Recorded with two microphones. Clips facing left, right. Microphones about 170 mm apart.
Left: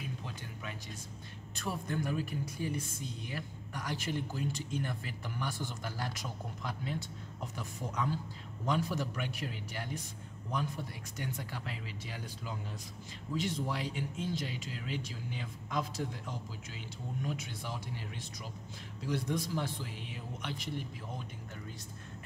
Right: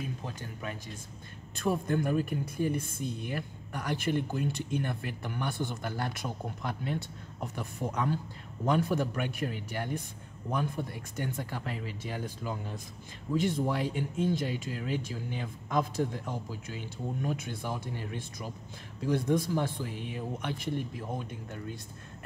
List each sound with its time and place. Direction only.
0.2 s speech: 45° right (ahead or behind)